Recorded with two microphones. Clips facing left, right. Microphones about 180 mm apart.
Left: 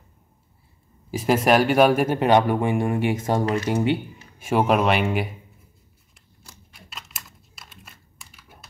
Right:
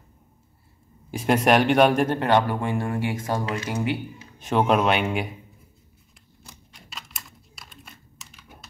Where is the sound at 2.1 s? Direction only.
15° left (ahead or behind).